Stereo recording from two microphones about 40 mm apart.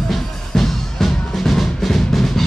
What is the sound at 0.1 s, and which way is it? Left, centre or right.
Music, centre.